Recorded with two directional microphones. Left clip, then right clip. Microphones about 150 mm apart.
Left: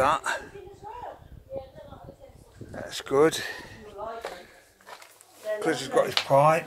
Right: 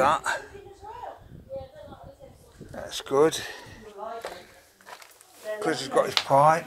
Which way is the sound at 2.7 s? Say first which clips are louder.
Even; 15° left (ahead or behind).